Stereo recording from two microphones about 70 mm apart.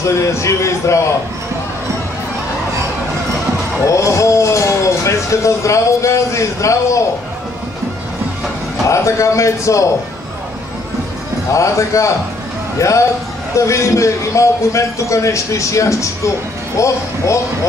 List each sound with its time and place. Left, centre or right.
0.0 s a man's voice: left
3.9 s speech: left
8.8 s a man's voice: left
11.5 s a man's voice: left